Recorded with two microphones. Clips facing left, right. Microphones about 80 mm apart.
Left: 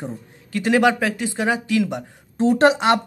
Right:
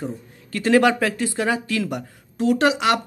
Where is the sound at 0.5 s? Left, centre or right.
Centre.